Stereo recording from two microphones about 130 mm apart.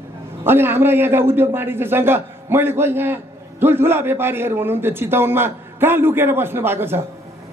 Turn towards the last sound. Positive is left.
turn(degrees=-15)  # may be behind; listen again after turning